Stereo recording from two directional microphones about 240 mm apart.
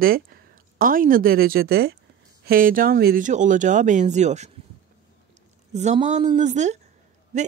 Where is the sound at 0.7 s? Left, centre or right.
Right.